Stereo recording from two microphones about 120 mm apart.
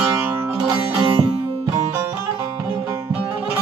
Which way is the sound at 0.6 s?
45° right (ahead or behind).